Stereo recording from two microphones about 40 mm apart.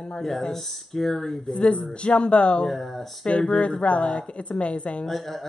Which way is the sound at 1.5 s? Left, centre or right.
Left.